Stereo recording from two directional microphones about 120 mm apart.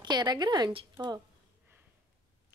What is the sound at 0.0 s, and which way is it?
Speech, 35° right (ahead or behind).